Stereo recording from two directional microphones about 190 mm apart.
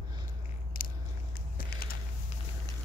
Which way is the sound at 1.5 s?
50° left (ahead or behind).